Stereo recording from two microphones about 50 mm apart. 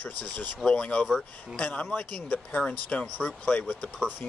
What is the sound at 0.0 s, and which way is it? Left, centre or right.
Speech, left.